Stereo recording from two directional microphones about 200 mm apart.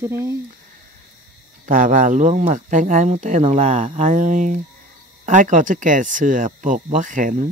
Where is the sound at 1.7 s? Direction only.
40° right (ahead or behind).